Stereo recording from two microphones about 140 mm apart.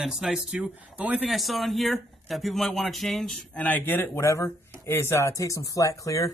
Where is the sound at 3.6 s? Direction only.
15° left (ahead or behind).